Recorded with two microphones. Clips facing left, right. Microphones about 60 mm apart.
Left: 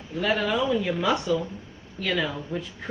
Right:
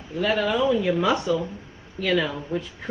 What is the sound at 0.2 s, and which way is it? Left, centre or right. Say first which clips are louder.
A woman's voice: right 2 dB; centre.